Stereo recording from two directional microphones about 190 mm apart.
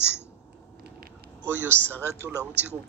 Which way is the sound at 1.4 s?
10° right (ahead or behind).